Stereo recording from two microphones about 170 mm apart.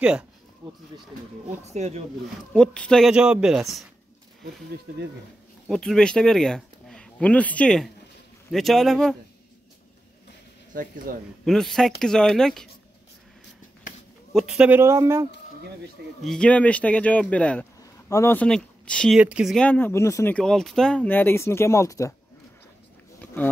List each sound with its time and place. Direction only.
1.6 s speech: 40° right (ahead or behind)
2.5 s speech: 5° left (ahead or behind)
5.7 s speech: 5° left (ahead or behind)
10.7 s speech: 55° right (ahead or behind)
11.4 s speech: centre (ahead or behind)
14.3 s speech: 5° right (ahead or behind)
16.2 s speech: 5° left (ahead or behind)
20.3 s speech: 5° left (ahead or behind)